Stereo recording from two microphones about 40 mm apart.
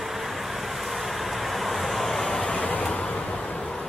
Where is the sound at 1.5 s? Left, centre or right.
Centre.